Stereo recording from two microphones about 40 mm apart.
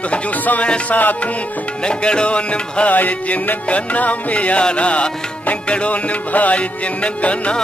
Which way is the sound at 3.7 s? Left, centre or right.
Left.